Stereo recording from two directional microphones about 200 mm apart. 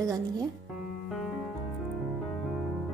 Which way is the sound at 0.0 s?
15° right (ahead or behind).